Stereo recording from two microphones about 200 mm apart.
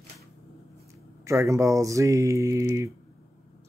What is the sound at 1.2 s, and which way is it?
Speech, 15° right (ahead or behind).